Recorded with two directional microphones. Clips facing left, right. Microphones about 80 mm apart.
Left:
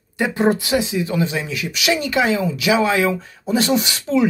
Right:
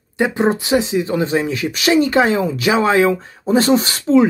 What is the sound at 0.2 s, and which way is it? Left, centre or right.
Speech, right.